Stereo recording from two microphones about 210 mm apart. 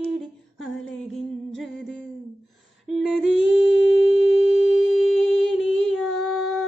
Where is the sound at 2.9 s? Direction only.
Centre (ahead or behind).